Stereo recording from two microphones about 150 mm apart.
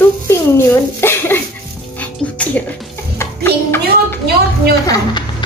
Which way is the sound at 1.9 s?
10° left (ahead or behind).